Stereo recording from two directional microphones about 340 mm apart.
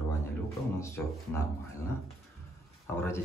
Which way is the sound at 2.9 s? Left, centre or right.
Centre.